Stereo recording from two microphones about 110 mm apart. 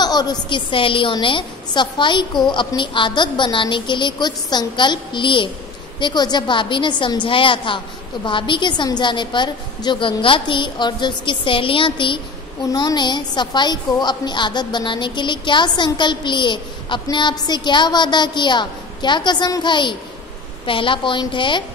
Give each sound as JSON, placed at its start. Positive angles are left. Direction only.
{"t": 0.0, "sound": "a woman's voice", "side_deg": 40}
{"t": 12.6, "sound": "a woman's voice", "side_deg": 40}